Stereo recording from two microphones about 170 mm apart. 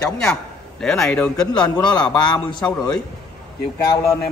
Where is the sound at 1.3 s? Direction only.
20° left (ahead or behind).